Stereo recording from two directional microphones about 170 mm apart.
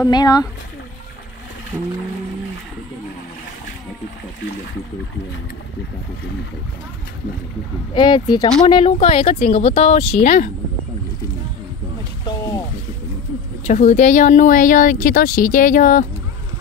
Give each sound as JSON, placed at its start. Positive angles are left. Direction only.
{"t": 0.0, "sound": "speech", "side_deg": 25}
{"t": 7.9, "sound": "speech", "side_deg": 25}
{"t": 12.3, "sound": "music", "side_deg": 20}
{"t": 13.7, "sound": "speech", "side_deg": 45}